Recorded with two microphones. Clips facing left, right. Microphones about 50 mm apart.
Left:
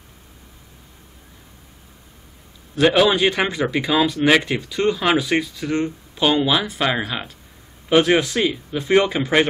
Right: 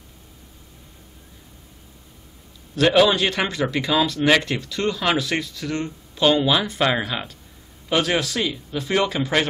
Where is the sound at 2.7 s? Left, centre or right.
Centre.